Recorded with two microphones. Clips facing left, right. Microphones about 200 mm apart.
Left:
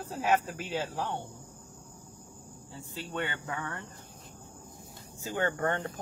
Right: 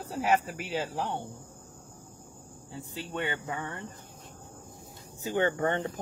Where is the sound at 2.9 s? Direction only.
15° right (ahead or behind).